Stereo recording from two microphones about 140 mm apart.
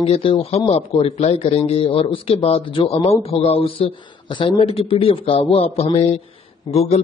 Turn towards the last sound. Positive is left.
turn(degrees=50)  # may be behind; listen again after turning